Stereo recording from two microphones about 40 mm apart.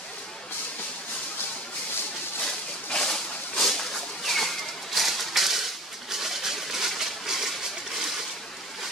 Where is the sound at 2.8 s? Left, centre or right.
Centre.